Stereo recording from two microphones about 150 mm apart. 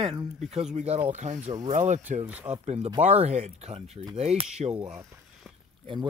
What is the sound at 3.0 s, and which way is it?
Speech, 45° right (ahead or behind).